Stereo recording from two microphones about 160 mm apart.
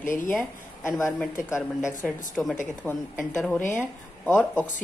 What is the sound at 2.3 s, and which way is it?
A woman's voice, centre (ahead or behind).